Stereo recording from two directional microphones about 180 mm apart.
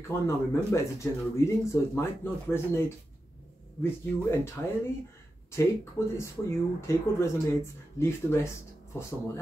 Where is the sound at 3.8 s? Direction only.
15° left (ahead or behind).